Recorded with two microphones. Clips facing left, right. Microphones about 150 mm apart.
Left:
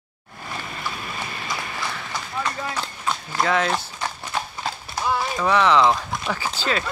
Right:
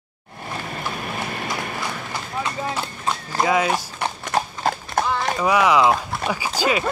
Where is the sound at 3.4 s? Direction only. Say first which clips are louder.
Right 2 dB; 10° right (ahead or behind).